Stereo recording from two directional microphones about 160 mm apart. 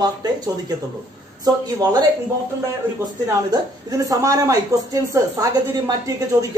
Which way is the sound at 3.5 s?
25° right (ahead or behind).